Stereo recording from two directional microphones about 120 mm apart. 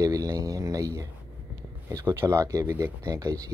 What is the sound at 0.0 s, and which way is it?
Speech, 30° right (ahead or behind).